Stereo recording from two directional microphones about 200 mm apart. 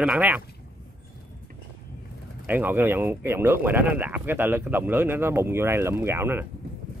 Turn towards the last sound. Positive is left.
turn(degrees=-10)  # may be behind; listen again after turning